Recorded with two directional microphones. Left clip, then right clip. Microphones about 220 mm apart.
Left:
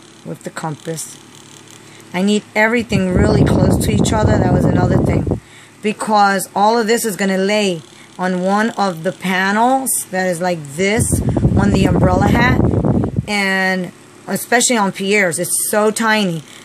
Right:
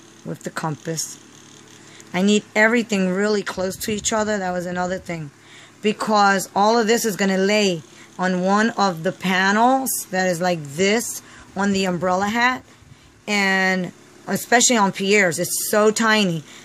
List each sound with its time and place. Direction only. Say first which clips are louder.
0.4 s speech: left 2 dB; 5° right (ahead or behind)
2.1 s speech: left 2 dB; 5° right (ahead or behind)